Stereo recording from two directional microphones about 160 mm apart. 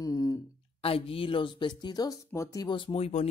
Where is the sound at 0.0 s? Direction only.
20° left (ahead or behind).